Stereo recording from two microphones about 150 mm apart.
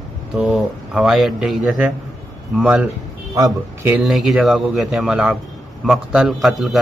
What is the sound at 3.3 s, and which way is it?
Speech, 25° right (ahead or behind).